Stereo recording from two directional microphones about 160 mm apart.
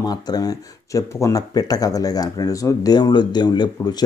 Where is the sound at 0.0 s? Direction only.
25° left (ahead or behind).